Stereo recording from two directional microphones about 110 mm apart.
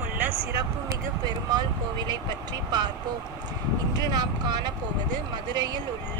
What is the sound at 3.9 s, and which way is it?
Speech, 35° right (ahead or behind).